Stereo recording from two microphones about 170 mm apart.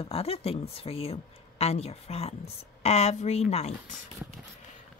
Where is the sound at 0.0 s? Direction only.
35° left (ahead or behind).